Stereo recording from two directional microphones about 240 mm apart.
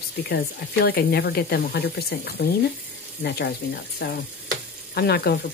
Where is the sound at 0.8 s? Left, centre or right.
Left.